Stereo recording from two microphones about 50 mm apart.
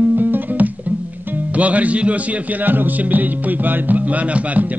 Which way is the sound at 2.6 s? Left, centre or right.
Right.